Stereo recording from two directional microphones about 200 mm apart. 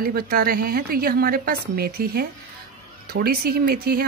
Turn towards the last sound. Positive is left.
turn(degrees=-50)  # may be behind; listen again after turning